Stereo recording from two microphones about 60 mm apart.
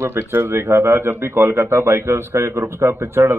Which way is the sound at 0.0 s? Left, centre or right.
Right.